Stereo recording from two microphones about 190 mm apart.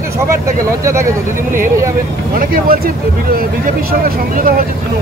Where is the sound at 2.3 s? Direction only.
50° right (ahead or behind).